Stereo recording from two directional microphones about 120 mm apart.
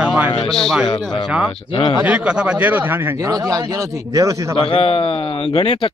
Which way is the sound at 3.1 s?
30° right (ahead or behind).